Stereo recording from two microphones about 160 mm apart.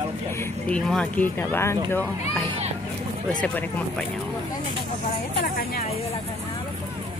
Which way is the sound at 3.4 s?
5° left (ahead or behind).